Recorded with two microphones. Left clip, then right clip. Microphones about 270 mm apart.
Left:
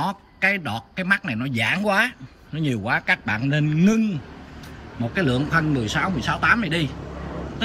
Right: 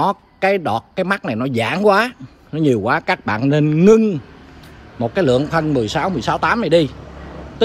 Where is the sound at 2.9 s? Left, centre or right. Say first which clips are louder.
Right 4 dB; right.